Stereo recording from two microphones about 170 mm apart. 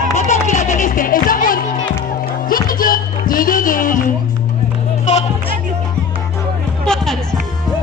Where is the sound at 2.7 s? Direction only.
55° left (ahead or behind).